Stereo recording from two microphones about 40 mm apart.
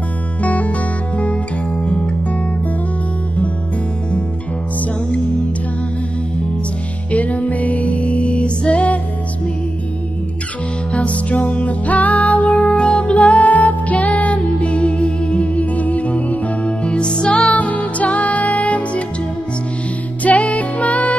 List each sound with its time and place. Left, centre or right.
0.4 s music: left
4.7 s music: left
10.9 s music: left
20.2 s music: left